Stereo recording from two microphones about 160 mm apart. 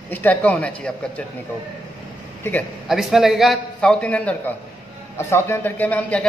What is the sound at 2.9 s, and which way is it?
A man's voice, centre (ahead or behind).